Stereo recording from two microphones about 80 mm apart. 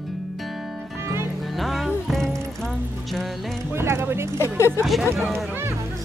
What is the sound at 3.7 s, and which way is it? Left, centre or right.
Clip-clop, right.